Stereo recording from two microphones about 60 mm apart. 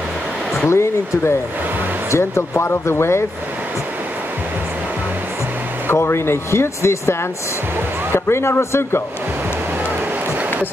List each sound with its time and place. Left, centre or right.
0.7 s speech: left
5.9 s speech: left